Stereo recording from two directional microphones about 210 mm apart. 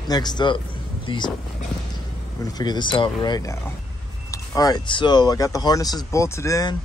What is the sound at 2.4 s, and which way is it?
Speech, 20° left (ahead or behind).